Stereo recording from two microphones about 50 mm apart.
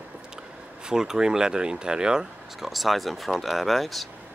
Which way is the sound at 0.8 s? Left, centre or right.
Centre.